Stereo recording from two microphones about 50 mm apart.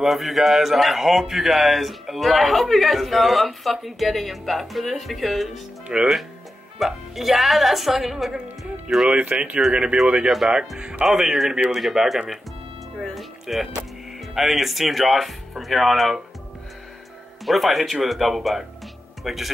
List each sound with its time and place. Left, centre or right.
0.0 s a man's voice: centre
5.9 s speech: centre
6.8 s a man's voice: centre
8.4 s speech: right
11.1 s a man's voice: centre
13.1 s music: centre
14.2 s a man's voice: centre
17.5 s a man's voice: centre